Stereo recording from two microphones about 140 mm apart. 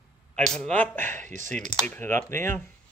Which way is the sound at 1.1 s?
60° right (ahead or behind).